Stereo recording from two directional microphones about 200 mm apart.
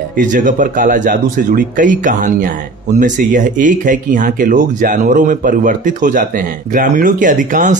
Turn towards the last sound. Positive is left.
turn(degrees=-40)  # may be behind; listen again after turning